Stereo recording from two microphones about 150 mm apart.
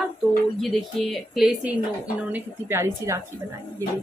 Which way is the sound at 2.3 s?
15° right (ahead or behind).